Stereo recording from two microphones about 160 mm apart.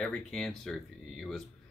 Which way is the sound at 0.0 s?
5° left (ahead or behind).